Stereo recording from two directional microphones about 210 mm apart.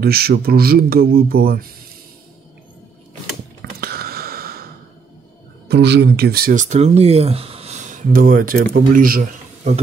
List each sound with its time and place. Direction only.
0.0 s speech: 45° right (ahead or behind)
3.8 s a sound: 45° right (ahead or behind)
5.7 s speech: 55° right (ahead or behind)